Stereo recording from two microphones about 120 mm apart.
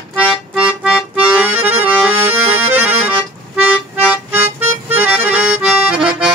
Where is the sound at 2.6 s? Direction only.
60° right (ahead or behind).